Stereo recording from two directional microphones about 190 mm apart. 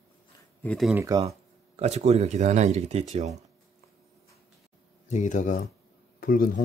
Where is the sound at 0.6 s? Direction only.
5° left (ahead or behind).